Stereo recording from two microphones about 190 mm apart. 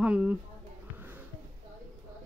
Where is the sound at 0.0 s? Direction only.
5° right (ahead or behind).